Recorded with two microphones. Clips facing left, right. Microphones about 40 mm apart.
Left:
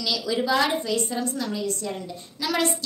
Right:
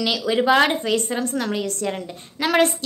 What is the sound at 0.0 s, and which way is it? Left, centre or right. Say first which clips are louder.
A woman's voice: right 6 dB; right.